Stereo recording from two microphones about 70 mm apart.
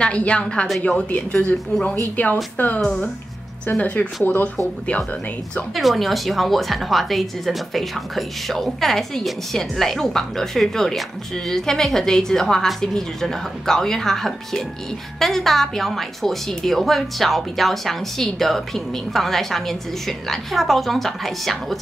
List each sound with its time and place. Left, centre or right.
0.0 s a woman's voice: centre
2.8 s a woman's voice: centre
3.8 s speech: left
5.8 s a woman's voice: centre